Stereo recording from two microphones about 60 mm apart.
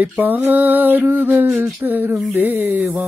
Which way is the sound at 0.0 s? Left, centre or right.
Right.